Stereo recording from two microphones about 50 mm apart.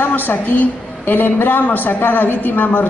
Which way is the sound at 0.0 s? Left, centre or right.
Left.